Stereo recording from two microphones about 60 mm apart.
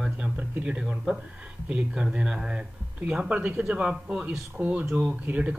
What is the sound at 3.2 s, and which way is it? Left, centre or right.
Speech, right.